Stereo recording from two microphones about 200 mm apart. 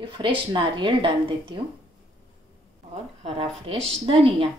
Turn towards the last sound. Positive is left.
turn(degrees=-25)  # may be behind; listen again after turning